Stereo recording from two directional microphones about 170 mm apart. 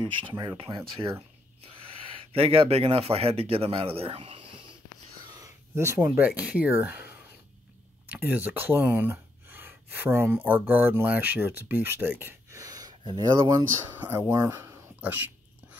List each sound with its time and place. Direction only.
0.0 s speech: 30° right (ahead or behind)
2.3 s speech: 35° right (ahead or behind)
5.3 s a sound: 20° right (ahead or behind)
5.9 s speech: 10° right (ahead or behind)